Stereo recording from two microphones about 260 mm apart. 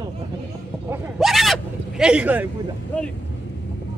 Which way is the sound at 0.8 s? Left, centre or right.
Centre.